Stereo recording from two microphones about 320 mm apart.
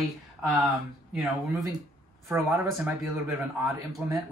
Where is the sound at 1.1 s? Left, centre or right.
Centre.